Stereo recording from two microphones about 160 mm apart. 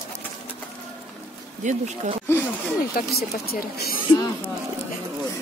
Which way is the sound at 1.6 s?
50° right (ahead or behind).